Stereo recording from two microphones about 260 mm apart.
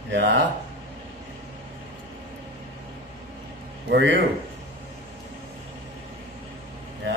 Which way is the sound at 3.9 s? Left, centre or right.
Right.